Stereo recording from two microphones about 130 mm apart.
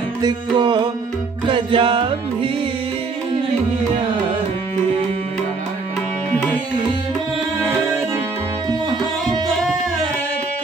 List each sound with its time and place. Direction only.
0.2 s music: 35° right (ahead or behind)
6.3 s music: 10° left (ahead or behind)